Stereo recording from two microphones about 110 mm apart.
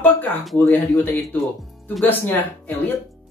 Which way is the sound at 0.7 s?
20° left (ahead or behind).